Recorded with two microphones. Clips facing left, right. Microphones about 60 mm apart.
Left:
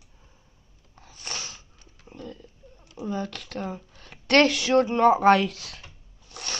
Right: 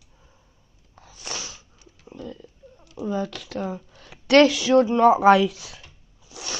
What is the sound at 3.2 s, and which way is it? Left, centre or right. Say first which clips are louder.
A woman's voice: right 3 dB; left.